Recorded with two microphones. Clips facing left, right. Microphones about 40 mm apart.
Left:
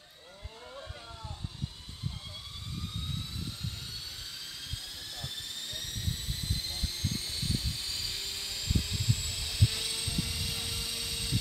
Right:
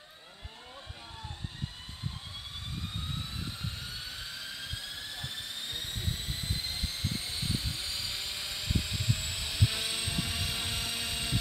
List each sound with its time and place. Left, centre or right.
4.4 s vehicle: centre